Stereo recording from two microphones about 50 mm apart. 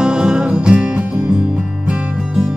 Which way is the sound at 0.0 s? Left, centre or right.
Centre.